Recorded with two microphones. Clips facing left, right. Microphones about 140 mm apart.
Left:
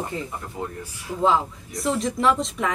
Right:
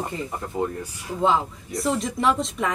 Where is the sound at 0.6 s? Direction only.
25° right (ahead or behind).